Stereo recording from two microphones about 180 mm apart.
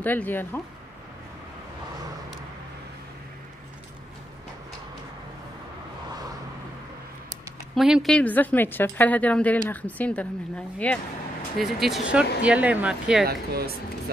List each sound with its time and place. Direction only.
0.0 s a woman's voice: 10° left (ahead or behind)
7.7 s a woman's voice: centre (ahead or behind)
13.3 s speech: 60° right (ahead or behind)